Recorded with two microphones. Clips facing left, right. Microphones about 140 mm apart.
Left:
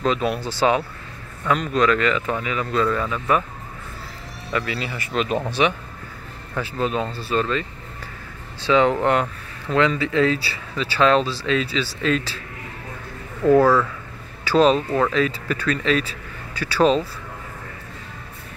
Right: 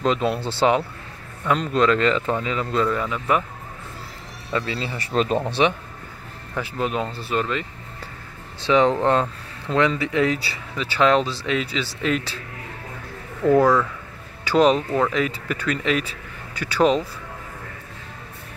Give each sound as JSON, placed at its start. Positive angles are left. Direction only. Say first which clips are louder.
{"t": 0.0, "sound": "speech", "louder": "even", "side_deg": -25}
{"t": 4.5, "sound": "speech", "louder": "even", "side_deg": -25}
{"t": 6.5, "sound": "speech", "louder": "left 1 dB", "side_deg": -15}
{"t": 8.6, "sound": "speech", "louder": "even", "side_deg": -20}
{"t": 13.5, "sound": "speech", "louder": "left 1 dB", "side_deg": -15}